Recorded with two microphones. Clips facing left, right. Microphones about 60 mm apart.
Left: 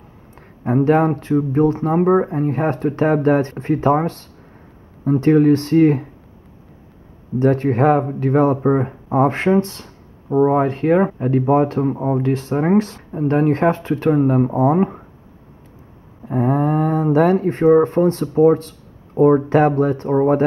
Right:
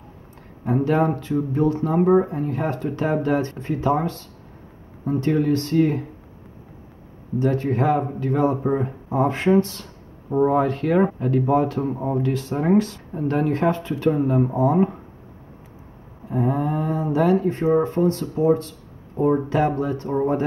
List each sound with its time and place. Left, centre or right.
0.7 s speech: left
7.3 s speech: left
10.3 s speech: left
11.9 s speech: left
12.2 s speech: left
16.3 s speech: left